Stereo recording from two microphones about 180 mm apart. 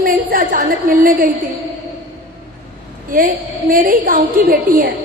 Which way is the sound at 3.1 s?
50° right (ahead or behind).